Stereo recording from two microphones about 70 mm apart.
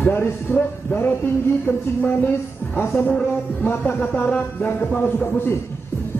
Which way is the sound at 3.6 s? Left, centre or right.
Left.